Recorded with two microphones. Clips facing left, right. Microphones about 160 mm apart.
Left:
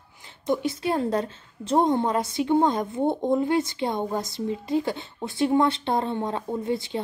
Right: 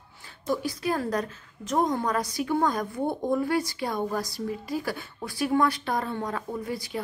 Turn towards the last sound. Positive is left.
turn(degrees=25)  # may be behind; listen again after turning